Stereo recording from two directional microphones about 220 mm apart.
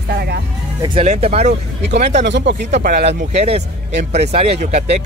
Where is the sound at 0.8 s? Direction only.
30° right (ahead or behind).